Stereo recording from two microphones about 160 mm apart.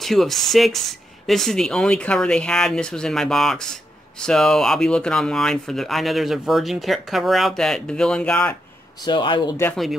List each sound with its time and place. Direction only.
0.0 s speech: centre (ahead or behind)
9.0 s speech: 30° left (ahead or behind)